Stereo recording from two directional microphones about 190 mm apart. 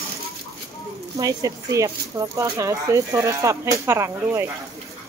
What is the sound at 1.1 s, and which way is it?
Speech, 20° right (ahead or behind).